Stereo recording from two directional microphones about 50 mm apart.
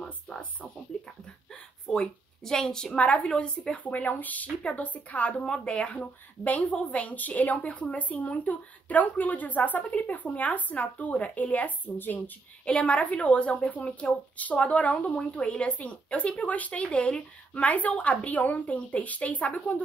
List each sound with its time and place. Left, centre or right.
0.9 s a woman's voice: centre; by 12.2 s left
12.6 s a woman's voice: left